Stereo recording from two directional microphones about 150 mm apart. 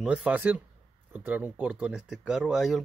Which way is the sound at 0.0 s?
5° right (ahead or behind).